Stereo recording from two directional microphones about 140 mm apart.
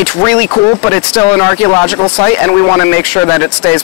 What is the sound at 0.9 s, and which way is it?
Speech, 20° left (ahead or behind).